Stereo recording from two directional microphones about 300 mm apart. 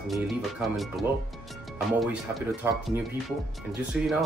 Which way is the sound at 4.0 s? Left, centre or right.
Centre.